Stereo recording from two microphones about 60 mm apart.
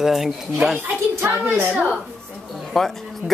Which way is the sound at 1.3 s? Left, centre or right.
Right.